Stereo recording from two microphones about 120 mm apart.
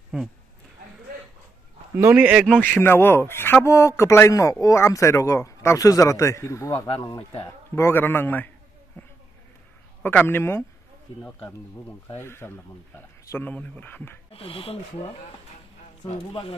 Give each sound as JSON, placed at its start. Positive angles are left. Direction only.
{"t": 2.0, "sound": "speech", "side_deg": -15}
{"t": 2.7, "sound": "speech", "side_deg": 20}
{"t": 9.0, "sound": "a sound", "side_deg": 15}
{"t": 10.0, "sound": "speech", "side_deg": 15}
{"t": 12.2, "sound": "speech", "side_deg": 20}
{"t": 14.3, "sound": "speech", "side_deg": 50}